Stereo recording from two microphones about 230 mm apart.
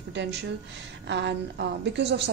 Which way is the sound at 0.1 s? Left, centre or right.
Right.